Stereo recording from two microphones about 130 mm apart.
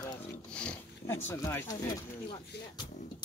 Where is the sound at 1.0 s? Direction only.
20° left (ahead or behind).